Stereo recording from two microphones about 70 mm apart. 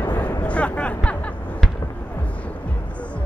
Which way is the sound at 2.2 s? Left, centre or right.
Centre.